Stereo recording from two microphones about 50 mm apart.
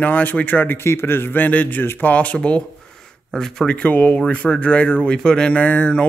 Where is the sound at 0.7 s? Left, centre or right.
Left.